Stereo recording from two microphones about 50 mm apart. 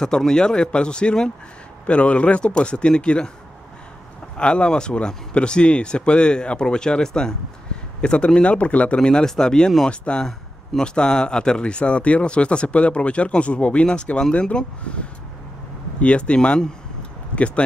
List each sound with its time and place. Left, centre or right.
0.0 s speech: centre
4.4 s speech: centre